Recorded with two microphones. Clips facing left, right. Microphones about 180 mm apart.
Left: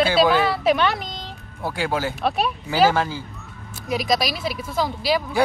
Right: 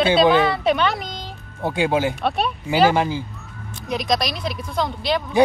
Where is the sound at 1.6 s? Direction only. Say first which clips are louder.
Right 4 dB; 20° right (ahead or behind).